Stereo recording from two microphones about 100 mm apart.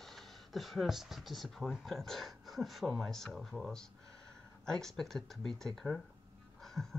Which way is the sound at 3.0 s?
5° left (ahead or behind).